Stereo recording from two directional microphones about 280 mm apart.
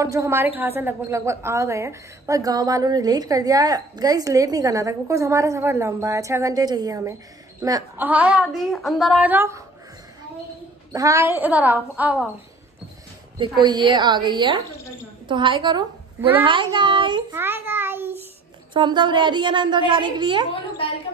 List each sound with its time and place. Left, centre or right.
0.0 s a woman's voice: centre
10.9 s a woman's voice: centre
13.4 s a woman's voice: centre
20.5 s a woman's voice: centre